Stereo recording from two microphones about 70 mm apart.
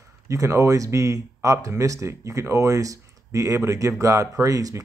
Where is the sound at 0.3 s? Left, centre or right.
Right.